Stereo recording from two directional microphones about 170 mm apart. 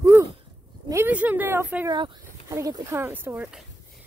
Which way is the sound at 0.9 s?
10° right (ahead or behind).